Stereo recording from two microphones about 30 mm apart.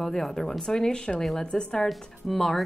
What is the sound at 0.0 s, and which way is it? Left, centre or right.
Speech, centre.